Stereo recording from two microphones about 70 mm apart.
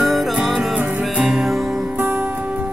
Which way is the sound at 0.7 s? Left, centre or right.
Centre.